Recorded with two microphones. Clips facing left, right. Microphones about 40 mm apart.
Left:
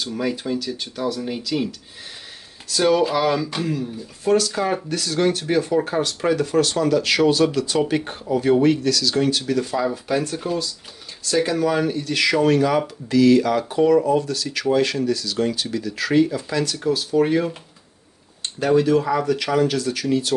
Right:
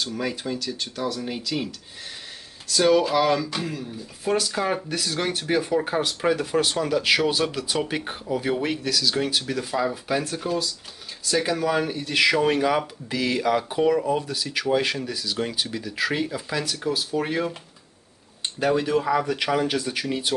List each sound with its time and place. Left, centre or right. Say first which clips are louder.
0.0 s speech: left 3 dB; centre
2.7 s speech: left 1 dB; centre
18.6 s speech: left 5 dB; centre